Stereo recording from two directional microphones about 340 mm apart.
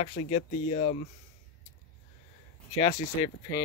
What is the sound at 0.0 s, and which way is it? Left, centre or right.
Speech, centre.